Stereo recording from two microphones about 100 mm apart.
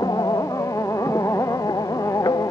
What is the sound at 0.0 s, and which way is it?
Music, 40° left (ahead or behind).